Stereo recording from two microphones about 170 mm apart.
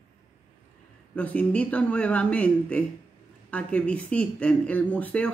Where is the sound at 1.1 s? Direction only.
10° left (ahead or behind).